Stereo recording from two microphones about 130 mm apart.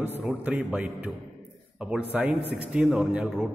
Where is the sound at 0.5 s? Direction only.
10° right (ahead or behind).